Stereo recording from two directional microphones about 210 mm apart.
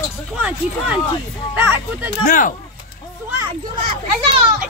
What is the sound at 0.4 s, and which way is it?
Speech, 5° right (ahead or behind).